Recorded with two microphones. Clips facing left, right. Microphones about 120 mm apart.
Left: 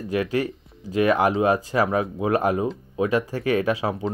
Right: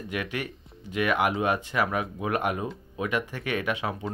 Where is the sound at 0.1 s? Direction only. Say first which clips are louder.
Left 9 dB; 35° left (ahead or behind).